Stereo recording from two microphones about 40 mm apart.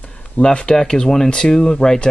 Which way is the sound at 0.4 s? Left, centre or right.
Left.